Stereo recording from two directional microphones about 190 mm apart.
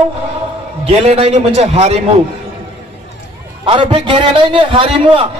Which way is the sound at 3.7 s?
25° right (ahead or behind).